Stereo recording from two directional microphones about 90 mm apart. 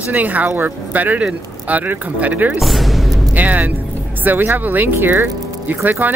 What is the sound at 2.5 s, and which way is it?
Speech, centre (ahead or behind).